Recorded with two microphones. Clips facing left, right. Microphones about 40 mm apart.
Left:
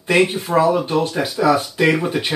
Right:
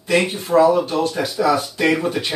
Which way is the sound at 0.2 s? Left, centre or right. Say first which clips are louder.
Right 2 dB; centre.